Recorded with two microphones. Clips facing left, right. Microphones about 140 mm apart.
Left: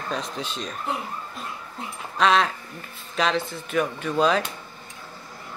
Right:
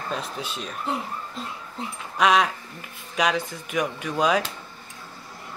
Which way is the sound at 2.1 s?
10° right (ahead or behind).